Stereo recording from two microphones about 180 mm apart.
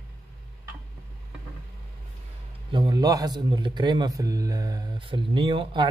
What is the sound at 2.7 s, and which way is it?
A man's voice, 25° right (ahead or behind).